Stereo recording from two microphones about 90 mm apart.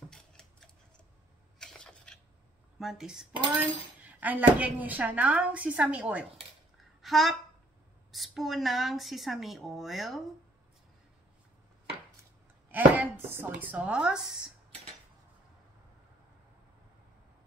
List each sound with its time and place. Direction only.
0.1 s cutlery: 5° left (ahead or behind)
1.6 s a sound: 10° left (ahead or behind)
2.8 s speech: 5° right (ahead or behind)
7.0 s a woman's voice: centre (ahead or behind)
12.7 s a woman's voice: 20° right (ahead or behind)